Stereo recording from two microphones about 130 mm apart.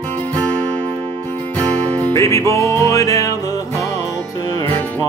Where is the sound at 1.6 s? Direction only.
10° left (ahead or behind).